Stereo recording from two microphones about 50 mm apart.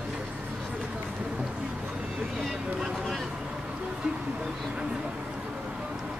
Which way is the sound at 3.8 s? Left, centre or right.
Right.